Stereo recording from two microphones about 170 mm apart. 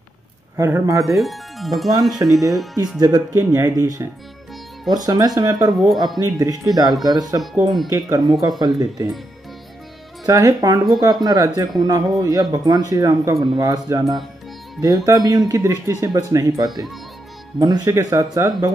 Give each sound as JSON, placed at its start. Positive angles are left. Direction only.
{"t": 0.6, "sound": "speech", "side_deg": -15}
{"t": 1.1, "sound": "speech", "side_deg": 0}
{"t": 1.9, "sound": "speech", "side_deg": -25}
{"t": 2.2, "sound": "speech", "side_deg": 0}
{"t": 3.0, "sound": "speech", "side_deg": -20}
{"t": 10.2, "sound": "speech", "side_deg": -20}